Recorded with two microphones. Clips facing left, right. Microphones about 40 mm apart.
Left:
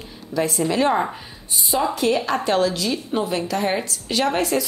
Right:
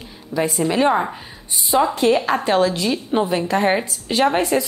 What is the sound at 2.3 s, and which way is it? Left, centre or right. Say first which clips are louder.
A woman's voice: right 2 dB; centre.